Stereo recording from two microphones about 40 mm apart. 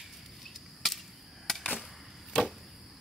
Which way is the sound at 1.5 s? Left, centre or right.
Centre.